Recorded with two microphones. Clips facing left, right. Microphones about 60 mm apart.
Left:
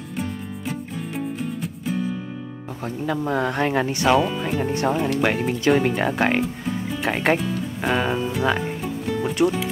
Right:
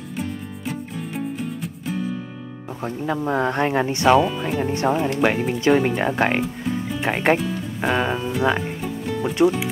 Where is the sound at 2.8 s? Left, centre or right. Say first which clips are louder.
Right 1 dB; centre.